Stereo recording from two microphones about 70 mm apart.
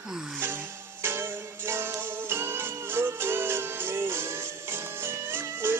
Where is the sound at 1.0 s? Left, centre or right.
Right.